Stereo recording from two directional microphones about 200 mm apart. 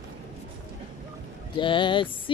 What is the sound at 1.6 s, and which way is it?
Speech, 25° left (ahead or behind).